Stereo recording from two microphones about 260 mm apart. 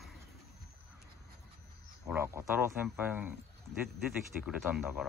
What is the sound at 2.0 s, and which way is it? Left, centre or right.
Speech, centre.